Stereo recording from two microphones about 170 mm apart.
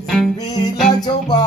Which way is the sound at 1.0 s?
25° left (ahead or behind).